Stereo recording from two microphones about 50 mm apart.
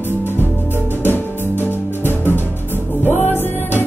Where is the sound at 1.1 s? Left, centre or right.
Left.